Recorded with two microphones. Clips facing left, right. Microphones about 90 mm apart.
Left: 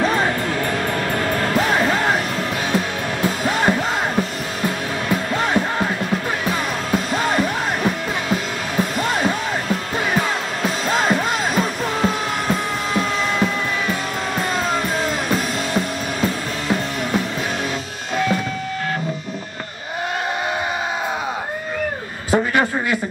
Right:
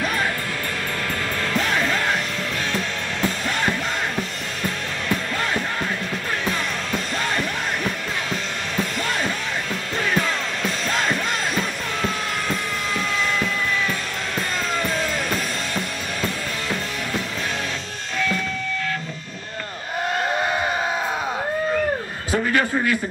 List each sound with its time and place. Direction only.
0.0 s music: 30° left (ahead or behind)
1.4 s music: 40° left (ahead or behind)
10.9 s music: 35° left (ahead or behind)
18.1 s music: 30° left (ahead or behind)
22.3 s a sound: 20° left (ahead or behind)